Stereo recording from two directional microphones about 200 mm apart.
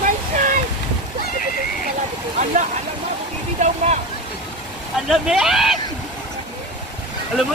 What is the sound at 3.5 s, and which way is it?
Speech, 35° right (ahead or behind).